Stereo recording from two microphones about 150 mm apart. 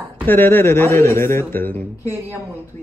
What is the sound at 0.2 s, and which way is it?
A man's voice, 15° left (ahead or behind).